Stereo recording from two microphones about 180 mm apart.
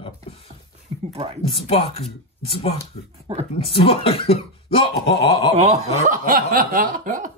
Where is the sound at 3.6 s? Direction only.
30° left (ahead or behind).